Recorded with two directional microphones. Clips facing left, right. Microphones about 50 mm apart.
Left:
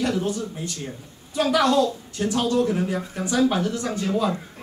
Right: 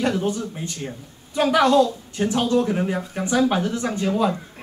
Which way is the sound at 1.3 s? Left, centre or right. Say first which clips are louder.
Right 3 dB; right.